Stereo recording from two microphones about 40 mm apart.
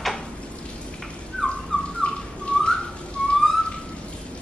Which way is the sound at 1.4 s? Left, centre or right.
Centre.